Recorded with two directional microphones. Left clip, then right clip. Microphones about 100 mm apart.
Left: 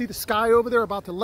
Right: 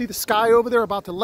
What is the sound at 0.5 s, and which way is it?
Speech, 70° right (ahead or behind).